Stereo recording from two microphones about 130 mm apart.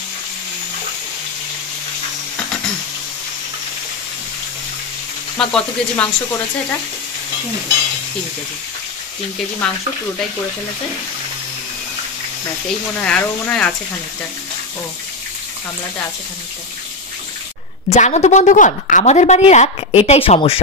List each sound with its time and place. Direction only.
5.4 s speech: 5° left (ahead or behind)
9.6 s speech: 10° left (ahead or behind)
13.0 s speech: 10° left (ahead or behind)
17.8 s a woman's voice: 60° left (ahead or behind)